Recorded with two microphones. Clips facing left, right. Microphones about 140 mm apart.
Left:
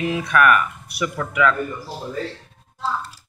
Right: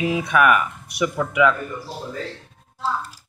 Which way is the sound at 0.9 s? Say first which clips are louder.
Right 3 dB; 10° right (ahead or behind).